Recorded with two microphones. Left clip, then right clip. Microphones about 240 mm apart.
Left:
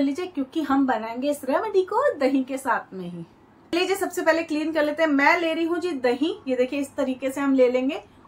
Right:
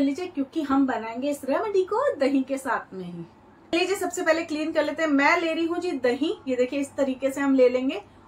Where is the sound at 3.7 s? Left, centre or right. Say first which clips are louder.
Left 1 dB; centre.